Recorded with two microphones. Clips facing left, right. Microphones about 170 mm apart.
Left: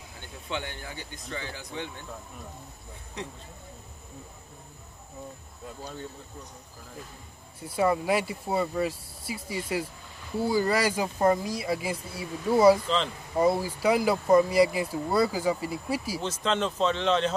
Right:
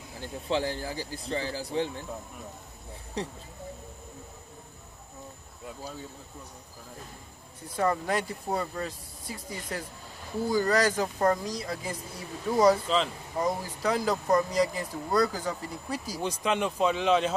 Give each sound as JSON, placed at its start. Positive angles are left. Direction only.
{"t": 0.2, "sound": "speech", "side_deg": -35}
{"t": 3.2, "sound": "speech", "side_deg": -35}
{"t": 7.6, "sound": "speech", "side_deg": 10}
{"t": 12.8, "sound": "speech", "side_deg": -5}
{"t": 13.4, "sound": "speech", "side_deg": 10}
{"t": 16.2, "sound": "speech", "side_deg": -10}